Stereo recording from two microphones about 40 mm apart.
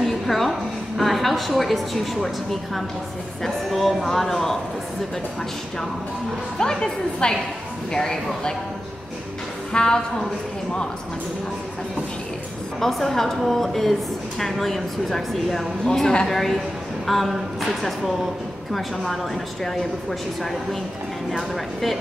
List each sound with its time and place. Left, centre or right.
0.0 s a sound: centre
3.4 s speech: centre
6.6 s speech: centre
9.7 s a woman's voice: centre
12.8 s speech: centre
15.8 s speech: centre
16.3 s speech: centre
18.7 s speech: centre
21.3 s speech: centre